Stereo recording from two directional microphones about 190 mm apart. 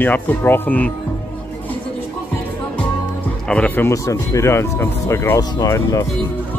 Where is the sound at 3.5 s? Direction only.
10° left (ahead or behind).